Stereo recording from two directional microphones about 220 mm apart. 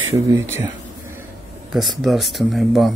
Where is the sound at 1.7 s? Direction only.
Centre (ahead or behind).